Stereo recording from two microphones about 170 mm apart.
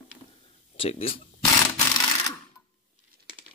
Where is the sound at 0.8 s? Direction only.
35° left (ahead or behind).